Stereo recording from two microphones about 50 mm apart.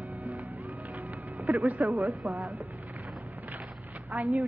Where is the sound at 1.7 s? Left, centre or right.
Right.